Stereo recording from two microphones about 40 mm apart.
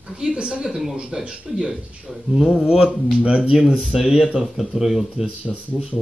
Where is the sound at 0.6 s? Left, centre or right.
Centre.